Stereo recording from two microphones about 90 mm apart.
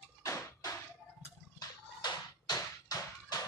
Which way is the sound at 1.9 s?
50° left (ahead or behind).